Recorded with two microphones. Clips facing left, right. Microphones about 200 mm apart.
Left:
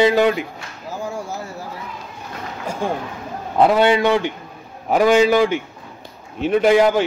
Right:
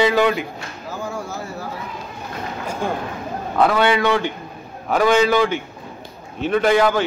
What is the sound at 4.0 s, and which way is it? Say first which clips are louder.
Speech: left 2 dB; 20° left (ahead or behind).